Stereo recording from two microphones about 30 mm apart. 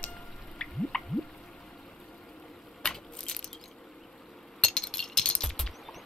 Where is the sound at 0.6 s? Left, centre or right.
Centre.